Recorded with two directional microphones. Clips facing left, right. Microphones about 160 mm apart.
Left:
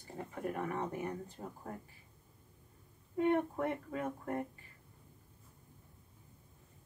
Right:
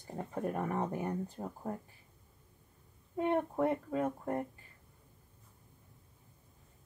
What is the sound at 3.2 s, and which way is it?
Speech, 30° right (ahead or behind).